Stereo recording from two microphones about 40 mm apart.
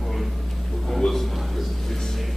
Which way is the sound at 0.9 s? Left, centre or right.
Centre.